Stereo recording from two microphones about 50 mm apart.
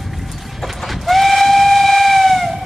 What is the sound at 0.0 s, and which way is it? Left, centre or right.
Train, centre.